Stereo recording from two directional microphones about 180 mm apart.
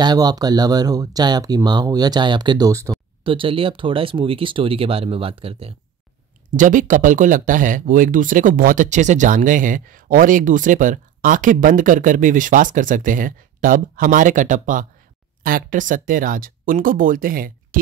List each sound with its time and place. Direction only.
0.0 s speech: 20° right (ahead or behind)
3.3 s speech: 30° right (ahead or behind)
6.5 s speech: 45° right (ahead or behind)